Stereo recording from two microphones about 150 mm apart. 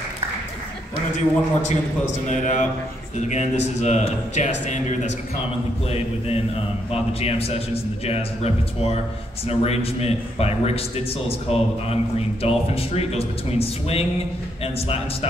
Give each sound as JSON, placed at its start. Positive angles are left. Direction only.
{"t": 1.1, "sound": "speech", "side_deg": 50}